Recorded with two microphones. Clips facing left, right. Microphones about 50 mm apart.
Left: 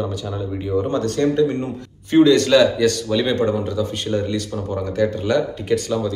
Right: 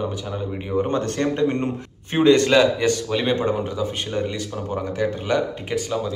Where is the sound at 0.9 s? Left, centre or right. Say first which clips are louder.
Left 3 dB; right.